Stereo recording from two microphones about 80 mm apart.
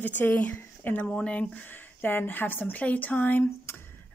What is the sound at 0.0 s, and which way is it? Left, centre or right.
Speech, left.